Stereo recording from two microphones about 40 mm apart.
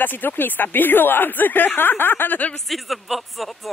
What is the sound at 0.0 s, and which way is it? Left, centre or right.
Speech, left.